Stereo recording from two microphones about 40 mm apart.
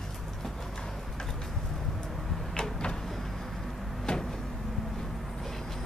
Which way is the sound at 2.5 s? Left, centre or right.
Left.